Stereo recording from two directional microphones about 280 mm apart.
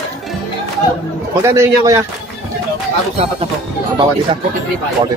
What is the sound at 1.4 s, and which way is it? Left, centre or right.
Speech, centre.